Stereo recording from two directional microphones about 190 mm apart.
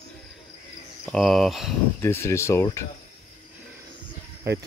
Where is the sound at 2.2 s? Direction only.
15° left (ahead or behind).